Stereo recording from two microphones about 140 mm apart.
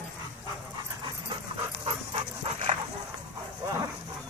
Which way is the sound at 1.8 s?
40° right (ahead or behind).